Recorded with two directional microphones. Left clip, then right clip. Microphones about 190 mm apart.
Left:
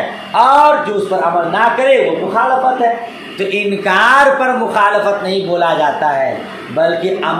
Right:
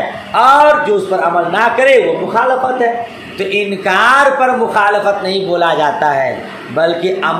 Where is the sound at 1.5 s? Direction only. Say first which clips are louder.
Right 1 dB; 20° right (ahead or behind).